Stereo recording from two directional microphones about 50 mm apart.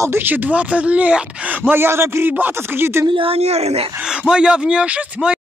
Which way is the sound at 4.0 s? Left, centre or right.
Centre.